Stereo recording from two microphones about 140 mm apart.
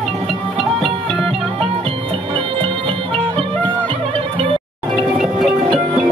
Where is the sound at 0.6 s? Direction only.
40° right (ahead or behind).